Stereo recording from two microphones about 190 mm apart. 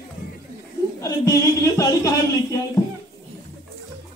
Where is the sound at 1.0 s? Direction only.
15° left (ahead or behind).